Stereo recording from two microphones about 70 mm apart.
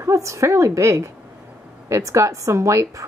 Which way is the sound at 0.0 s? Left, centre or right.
Right.